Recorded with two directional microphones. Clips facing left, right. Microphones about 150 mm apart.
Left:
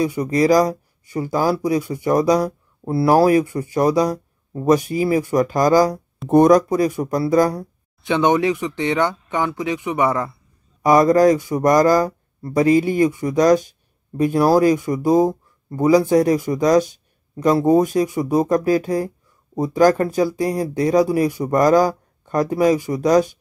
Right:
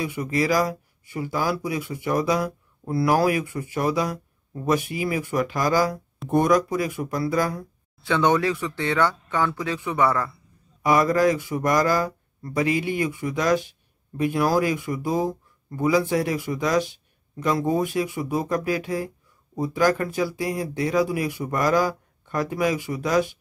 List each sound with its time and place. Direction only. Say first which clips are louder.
0.0 s speech: left 7 dB; 40° left (ahead or behind)
8.0 s speech: left 4 dB; 20° left (ahead or behind)
10.8 s speech: left 6 dB; 40° left (ahead or behind)